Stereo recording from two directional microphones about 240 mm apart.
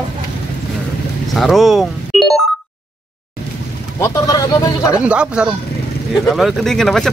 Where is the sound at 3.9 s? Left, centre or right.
Centre.